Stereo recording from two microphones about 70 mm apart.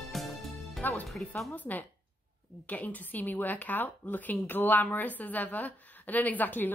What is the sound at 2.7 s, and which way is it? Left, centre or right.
A woman's voice, left.